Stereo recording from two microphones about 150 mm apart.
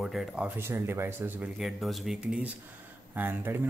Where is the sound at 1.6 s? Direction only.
Centre (ahead or behind).